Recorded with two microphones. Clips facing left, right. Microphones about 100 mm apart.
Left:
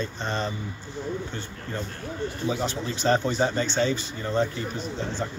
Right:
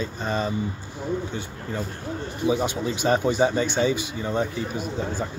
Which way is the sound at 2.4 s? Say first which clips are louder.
Right 6 dB; 15° right (ahead or behind).